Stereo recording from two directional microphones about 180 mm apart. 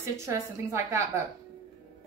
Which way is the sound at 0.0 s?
15° right (ahead or behind).